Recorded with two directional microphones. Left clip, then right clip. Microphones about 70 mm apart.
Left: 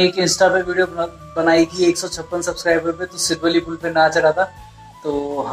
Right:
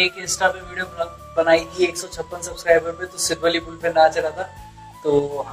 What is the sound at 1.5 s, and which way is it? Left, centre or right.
Speech, right.